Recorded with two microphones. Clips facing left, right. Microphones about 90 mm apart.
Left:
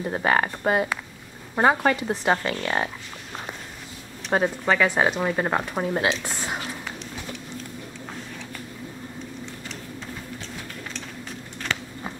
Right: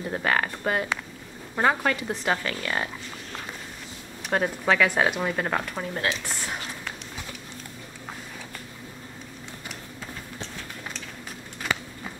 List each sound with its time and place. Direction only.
0.0 s speech: 10° left (ahead or behind)
4.3 s speech: 5° left (ahead or behind)
5.8 s speech: 25° left (ahead or behind)